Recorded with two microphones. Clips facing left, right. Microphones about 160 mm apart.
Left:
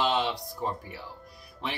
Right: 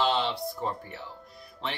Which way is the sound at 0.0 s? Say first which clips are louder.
Even; 15° left (ahead or behind).